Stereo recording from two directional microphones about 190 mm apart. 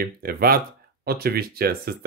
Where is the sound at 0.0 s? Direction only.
50° right (ahead or behind).